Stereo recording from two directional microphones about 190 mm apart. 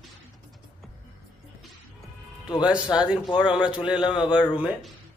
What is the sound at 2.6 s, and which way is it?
Speech, 5° right (ahead or behind).